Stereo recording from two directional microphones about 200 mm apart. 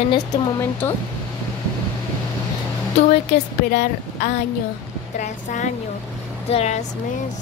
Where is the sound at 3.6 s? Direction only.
40° left (ahead or behind).